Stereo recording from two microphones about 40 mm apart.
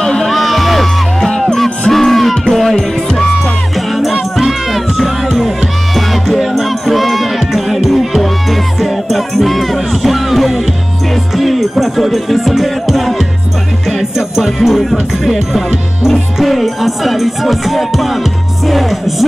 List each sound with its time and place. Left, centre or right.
0.0 s music: centre
3.1 s music: centre
3.7 s music: centre
16.3 s music: centre